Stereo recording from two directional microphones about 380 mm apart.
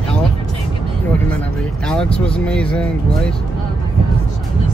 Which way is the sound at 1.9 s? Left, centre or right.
Centre.